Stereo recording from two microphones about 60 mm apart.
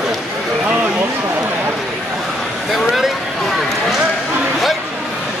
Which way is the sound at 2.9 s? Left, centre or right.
Centre.